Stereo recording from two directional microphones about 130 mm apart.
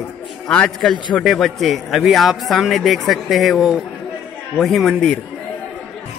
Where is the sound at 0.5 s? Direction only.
5° left (ahead or behind).